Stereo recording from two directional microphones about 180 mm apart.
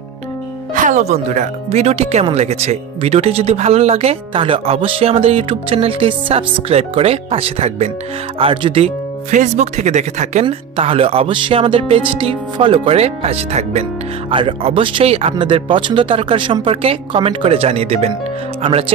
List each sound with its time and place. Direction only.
0.7 s speech: 45° right (ahead or behind)